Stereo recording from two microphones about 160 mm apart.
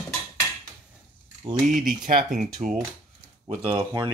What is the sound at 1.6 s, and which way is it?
Speech, 55° right (ahead or behind).